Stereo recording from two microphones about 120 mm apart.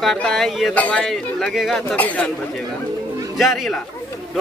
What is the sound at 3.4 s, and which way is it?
Speech, centre (ahead or behind).